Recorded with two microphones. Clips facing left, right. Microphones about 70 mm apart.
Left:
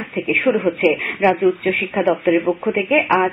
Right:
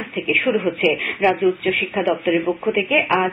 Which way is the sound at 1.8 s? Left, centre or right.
Centre.